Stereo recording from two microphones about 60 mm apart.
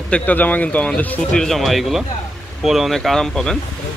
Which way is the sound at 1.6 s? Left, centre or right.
Centre.